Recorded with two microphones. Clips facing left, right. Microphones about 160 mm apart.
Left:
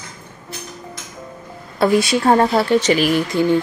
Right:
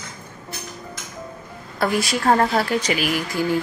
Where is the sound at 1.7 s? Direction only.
25° left (ahead or behind).